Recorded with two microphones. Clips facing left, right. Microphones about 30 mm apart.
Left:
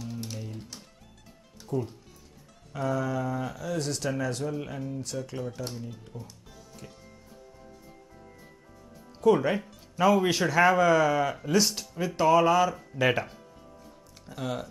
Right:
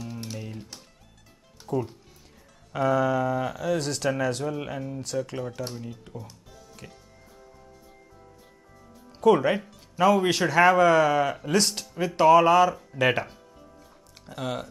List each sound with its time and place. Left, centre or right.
0.0 s music: right
1.7 s speech: right
4.5 s speech: right
6.8 s music: right
9.2 s speech: centre